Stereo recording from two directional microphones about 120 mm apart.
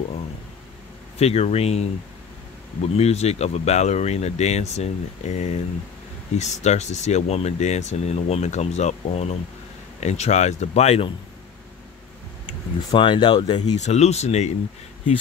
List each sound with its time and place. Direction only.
1.1 s speech: 60° left (ahead or behind)
12.9 s speech: 40° left (ahead or behind)
13.7 s speech: 70° left (ahead or behind)